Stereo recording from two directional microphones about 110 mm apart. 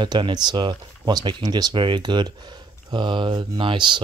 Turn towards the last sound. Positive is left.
turn(degrees=-45)  # may be behind; listen again after turning